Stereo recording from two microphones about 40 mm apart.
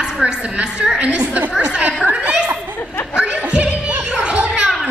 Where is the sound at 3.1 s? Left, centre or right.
Centre.